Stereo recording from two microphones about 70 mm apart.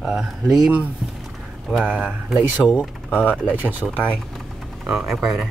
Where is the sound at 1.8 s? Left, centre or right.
Right.